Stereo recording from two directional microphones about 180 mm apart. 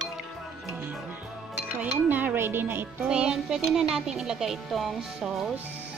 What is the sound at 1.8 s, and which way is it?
Speech, 10° right (ahead or behind).